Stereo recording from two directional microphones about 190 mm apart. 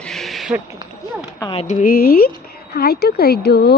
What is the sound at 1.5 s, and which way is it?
A woman's voice, 40° left (ahead or behind).